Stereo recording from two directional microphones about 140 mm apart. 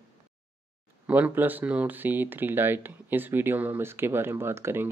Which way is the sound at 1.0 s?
10° right (ahead or behind).